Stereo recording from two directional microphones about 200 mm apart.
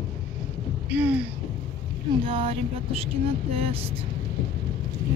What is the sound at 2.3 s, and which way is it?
Vehicle, 30° right (ahead or behind).